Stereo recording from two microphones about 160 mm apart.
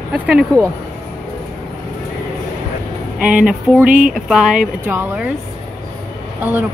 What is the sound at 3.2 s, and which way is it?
Speech, 5° right (ahead or behind).